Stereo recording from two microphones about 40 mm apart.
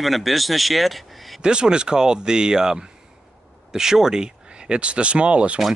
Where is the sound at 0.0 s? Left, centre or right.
Centre.